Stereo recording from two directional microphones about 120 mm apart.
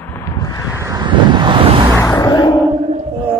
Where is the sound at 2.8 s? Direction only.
75° right (ahead or behind).